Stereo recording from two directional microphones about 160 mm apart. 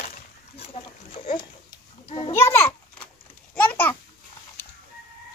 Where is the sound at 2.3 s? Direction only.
15° left (ahead or behind).